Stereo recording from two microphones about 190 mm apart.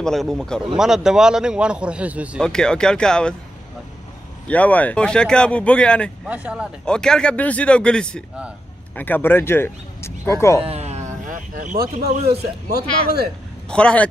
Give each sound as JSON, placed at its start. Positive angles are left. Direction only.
{"t": 0.0, "sound": "speech", "side_deg": 0}
{"t": 2.4, "sound": "speech", "side_deg": 5}
{"t": 4.5, "sound": "speech", "side_deg": 10}
{"t": 6.2, "sound": "speech", "side_deg": -5}
{"t": 10.6, "sound": "speech", "side_deg": -35}
{"t": 12.3, "sound": "speech", "side_deg": -55}
{"t": 13.7, "sound": "speech", "side_deg": 5}